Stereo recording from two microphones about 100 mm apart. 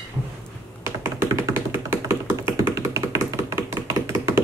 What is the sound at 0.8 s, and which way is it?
Tap, 30° right (ahead or behind).